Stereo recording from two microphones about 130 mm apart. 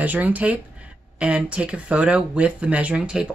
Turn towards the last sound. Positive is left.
turn(degrees=-5)  # may be behind; listen again after turning